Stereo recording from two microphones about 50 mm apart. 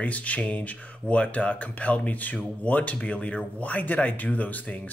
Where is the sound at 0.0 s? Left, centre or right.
Left.